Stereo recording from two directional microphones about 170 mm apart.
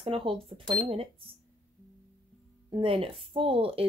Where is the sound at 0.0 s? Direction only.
30° right (ahead or behind).